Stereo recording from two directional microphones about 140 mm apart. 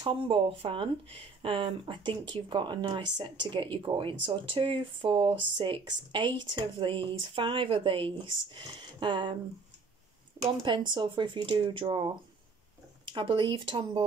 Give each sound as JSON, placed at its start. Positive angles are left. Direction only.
{"t": 0.0, "sound": "speech", "side_deg": -35}
{"t": 10.4, "sound": "speech", "side_deg": -30}
{"t": 13.1, "sound": "speech", "side_deg": -35}